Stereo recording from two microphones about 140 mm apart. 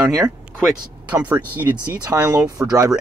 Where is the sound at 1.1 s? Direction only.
10° right (ahead or behind).